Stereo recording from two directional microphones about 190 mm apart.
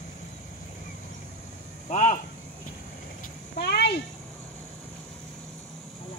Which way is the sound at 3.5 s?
60° left (ahead or behind).